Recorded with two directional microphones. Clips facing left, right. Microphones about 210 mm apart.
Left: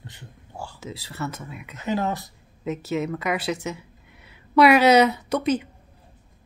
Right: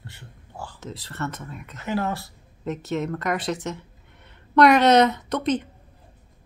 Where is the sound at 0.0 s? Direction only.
15° left (ahead or behind).